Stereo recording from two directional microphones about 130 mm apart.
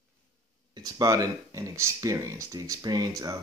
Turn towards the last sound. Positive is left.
turn(degrees=-30)  # may be behind; listen again after turning